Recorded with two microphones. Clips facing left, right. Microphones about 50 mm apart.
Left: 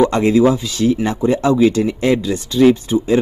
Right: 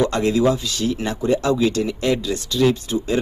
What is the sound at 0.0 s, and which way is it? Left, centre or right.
Speech, centre.